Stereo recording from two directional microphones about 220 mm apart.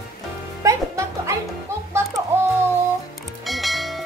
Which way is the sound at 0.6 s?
15° right (ahead or behind).